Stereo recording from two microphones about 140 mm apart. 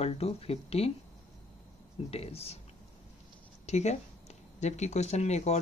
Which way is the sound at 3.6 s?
55° left (ahead or behind).